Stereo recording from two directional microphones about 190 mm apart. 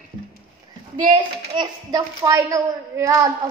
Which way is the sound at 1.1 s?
25° right (ahead or behind).